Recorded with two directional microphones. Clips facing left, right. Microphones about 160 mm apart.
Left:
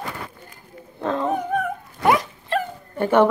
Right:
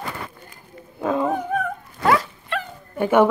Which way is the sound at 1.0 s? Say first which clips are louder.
Right 2 dB; 10° right (ahead or behind).